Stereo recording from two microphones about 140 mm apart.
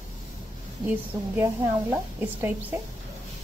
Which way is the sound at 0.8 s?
10° right (ahead or behind).